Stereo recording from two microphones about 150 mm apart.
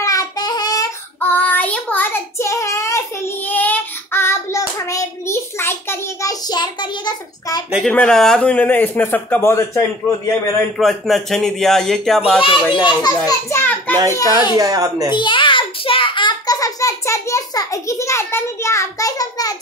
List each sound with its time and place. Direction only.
0.0 s child singing: 25° left (ahead or behind)
1.2 s child singing: 10° left (ahead or behind)
6.4 s a child's voice: 30° left (ahead or behind)
7.9 s a man's voice: 5° left (ahead or behind)
10.8 s speech: centre (ahead or behind)
12.4 s a child's voice: 35° left (ahead or behind); by 13.9 s 15° left (ahead or behind)
14.1 s a child's voice: 25° left (ahead or behind)
14.6 s speech: 25° right (ahead or behind)
15.0 s a sound: 30° left (ahead or behind)